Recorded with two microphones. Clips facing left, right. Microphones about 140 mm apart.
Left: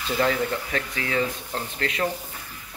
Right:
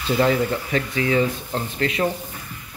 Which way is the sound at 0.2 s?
10° right (ahead or behind).